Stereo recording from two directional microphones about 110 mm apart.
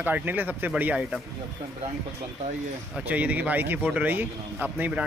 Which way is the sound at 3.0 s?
15° right (ahead or behind).